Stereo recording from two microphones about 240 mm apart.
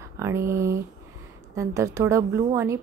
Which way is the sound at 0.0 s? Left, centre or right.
Centre.